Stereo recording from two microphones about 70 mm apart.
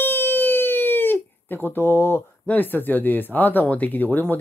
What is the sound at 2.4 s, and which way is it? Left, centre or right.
Speech, left.